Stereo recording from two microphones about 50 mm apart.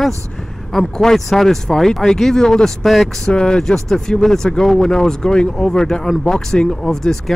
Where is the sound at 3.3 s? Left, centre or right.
Centre.